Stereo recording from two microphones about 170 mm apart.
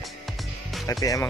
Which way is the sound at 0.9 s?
20° left (ahead or behind).